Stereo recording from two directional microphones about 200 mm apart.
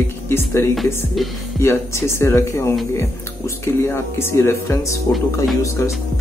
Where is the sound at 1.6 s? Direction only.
15° left (ahead or behind).